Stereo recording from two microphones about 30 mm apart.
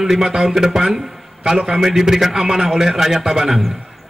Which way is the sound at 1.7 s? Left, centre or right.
Centre.